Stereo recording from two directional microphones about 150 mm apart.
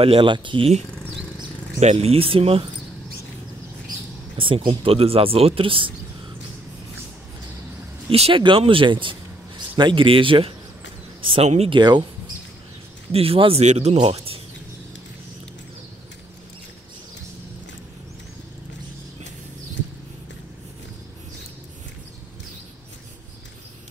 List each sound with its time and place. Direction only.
0.0 s speech: 35° right (ahead or behind)
4.4 s speech: 35° right (ahead or behind)
8.1 s speech: 35° right (ahead or behind)
11.7 s speech: 30° right (ahead or behind)
13.1 s speech: 40° right (ahead or behind)
14.1 s a sound: 40° right (ahead or behind)